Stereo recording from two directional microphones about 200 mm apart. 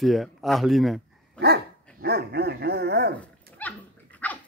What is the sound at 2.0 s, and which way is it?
Dog, 55° right (ahead or behind).